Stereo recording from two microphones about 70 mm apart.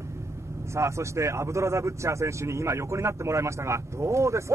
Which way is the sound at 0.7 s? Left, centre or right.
Right.